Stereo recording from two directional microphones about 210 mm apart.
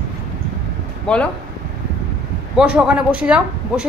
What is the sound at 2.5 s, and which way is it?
Speech, 5° right (ahead or behind).